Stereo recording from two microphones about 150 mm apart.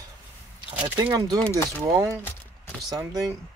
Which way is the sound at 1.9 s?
25° right (ahead or behind).